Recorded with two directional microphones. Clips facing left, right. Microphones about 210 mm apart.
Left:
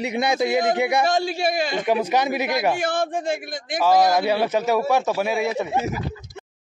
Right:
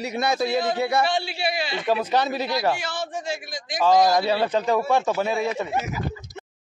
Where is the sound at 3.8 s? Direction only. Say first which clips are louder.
Even; 10° left (ahead or behind).